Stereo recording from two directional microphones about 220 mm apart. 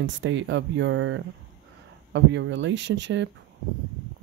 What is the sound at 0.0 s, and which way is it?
Speech, 55° right (ahead or behind).